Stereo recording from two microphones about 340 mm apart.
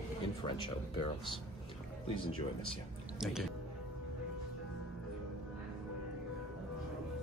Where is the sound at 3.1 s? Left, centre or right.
Centre.